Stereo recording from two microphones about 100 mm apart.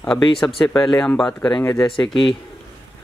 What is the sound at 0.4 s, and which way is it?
Speech, 35° left (ahead or behind).